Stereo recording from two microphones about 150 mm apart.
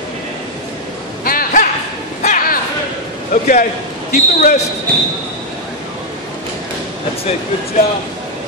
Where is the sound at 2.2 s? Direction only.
70° left (ahead or behind).